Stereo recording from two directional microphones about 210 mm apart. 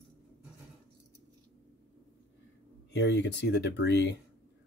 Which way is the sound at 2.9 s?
55° left (ahead or behind).